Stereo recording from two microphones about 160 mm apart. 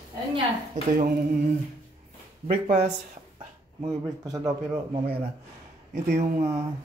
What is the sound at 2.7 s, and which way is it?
Speech, 45° right (ahead or behind).